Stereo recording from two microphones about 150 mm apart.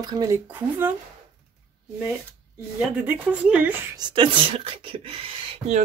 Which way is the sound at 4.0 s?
30° right (ahead or behind).